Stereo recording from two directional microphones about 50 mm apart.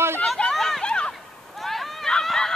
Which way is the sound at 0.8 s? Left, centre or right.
Centre.